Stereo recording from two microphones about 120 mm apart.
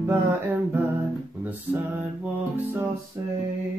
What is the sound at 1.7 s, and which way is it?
Music, 15° right (ahead or behind).